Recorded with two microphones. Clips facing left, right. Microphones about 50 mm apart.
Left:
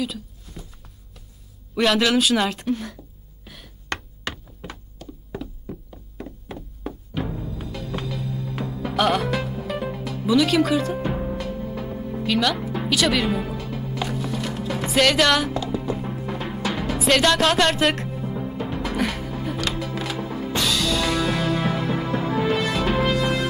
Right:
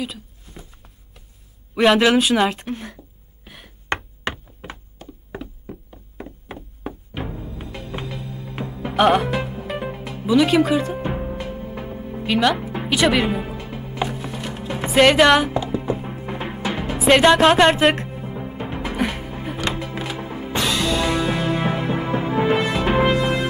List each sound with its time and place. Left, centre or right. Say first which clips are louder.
0.5 s a sound: left 1 dB; right
1.8 s speech: right 4 dB; centre
3.4 s knock: right 5 dB; right
6.8 s music: left 1 dB; centre
14.9 s speech: right 5 dB; centre
15.8 s music: right 1 dB; right
18.9 s music: right 2 dB; centre